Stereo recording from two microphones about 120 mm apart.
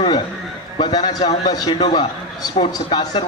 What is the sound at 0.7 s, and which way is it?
A man's voice, 40° left (ahead or behind).